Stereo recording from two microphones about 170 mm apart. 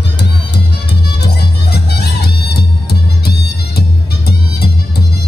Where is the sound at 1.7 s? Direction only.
75° left (ahead or behind).